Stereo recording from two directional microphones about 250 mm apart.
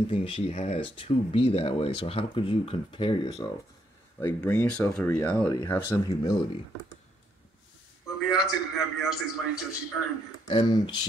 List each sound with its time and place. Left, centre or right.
0.1 s speech: left
8.2 s a man's voice: centre
10.5 s speech: centre